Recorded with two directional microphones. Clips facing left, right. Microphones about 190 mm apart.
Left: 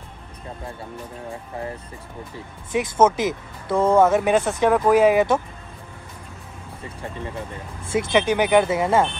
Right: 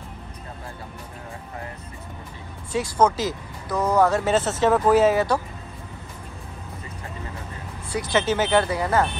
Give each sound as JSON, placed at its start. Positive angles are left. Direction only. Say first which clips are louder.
{"t": 2.7, "sound": "speech", "louder": "left 2 dB", "side_deg": 20}
{"t": 7.9, "sound": "speech", "louder": "left 3 dB", "side_deg": 20}